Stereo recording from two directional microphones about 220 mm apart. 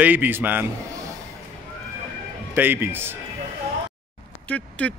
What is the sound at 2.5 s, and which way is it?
Speech, 10° right (ahead or behind).